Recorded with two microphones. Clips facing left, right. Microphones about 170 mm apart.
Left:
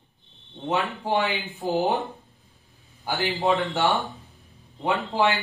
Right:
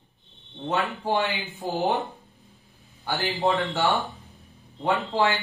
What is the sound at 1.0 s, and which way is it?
Speech, 15° left (ahead or behind).